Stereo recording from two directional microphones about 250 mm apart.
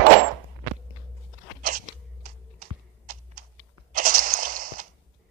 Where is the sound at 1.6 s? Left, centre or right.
Right.